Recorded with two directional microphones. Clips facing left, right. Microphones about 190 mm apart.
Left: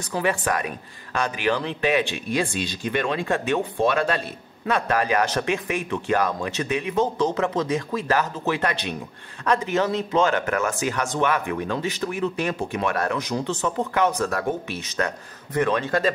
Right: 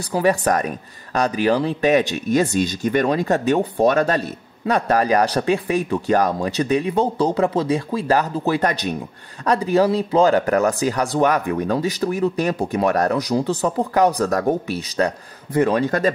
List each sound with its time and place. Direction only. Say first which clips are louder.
0.0 s speech: right 6 dB; 35° right (ahead or behind)